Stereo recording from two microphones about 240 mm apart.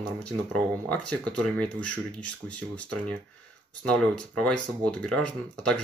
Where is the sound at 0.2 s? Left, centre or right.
Centre.